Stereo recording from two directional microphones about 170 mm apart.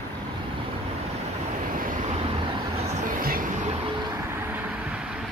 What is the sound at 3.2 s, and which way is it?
Vehicle, 60° right (ahead or behind).